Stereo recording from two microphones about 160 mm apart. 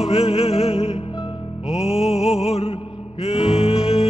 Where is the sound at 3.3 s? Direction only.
35° left (ahead or behind).